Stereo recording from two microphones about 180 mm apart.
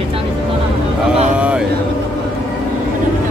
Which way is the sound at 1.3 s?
5° right (ahead or behind).